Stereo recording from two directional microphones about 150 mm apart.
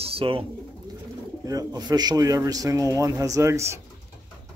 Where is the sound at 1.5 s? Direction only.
25° right (ahead or behind).